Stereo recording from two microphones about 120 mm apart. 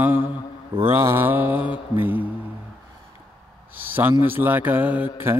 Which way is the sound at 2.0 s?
15° right (ahead or behind).